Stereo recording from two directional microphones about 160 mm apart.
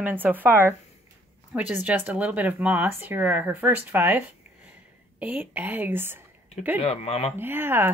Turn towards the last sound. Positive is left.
turn(degrees=-15)  # may be behind; listen again after turning